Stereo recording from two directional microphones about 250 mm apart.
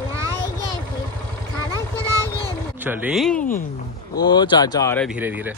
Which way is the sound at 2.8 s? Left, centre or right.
Centre.